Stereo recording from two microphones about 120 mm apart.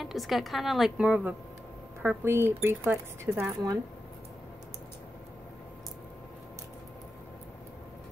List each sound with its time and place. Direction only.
0.0 s a woman's voice: centre (ahead or behind); by 3.7 s 25° right (ahead or behind)